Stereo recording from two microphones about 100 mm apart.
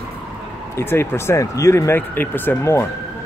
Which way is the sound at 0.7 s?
25° left (ahead or behind).